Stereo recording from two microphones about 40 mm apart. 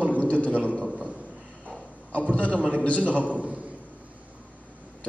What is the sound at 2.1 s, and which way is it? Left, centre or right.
A man's voice, left.